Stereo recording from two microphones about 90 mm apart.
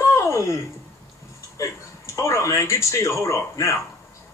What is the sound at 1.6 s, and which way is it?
Speech, 35° left (ahead or behind).